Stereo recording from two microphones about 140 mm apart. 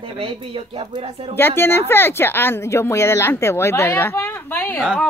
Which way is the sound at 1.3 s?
15° left (ahead or behind).